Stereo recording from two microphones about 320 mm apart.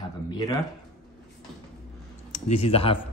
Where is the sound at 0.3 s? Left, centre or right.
Centre.